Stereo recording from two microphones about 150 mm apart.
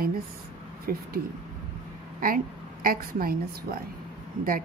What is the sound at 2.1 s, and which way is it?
A woman's voice, 70° right (ahead or behind).